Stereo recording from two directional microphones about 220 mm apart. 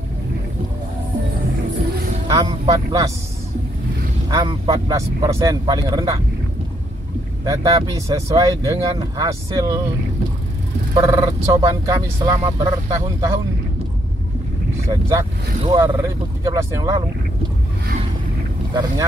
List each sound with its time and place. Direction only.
2.2 s speech: 15° right (ahead or behind)
4.3 s speech: 15° right (ahead or behind)
7.4 s speech: 15° right (ahead or behind)
11.0 s speech: 15° right (ahead or behind)
14.9 s speech: 15° right (ahead or behind)
18.7 s speech: 15° right (ahead or behind)